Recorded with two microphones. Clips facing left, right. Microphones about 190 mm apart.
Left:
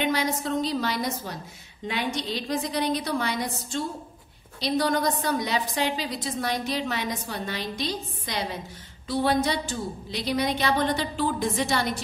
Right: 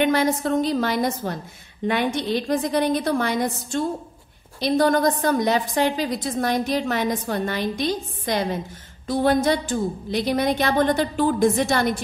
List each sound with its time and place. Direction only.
0.0 s a woman's voice: 50° right (ahead or behind)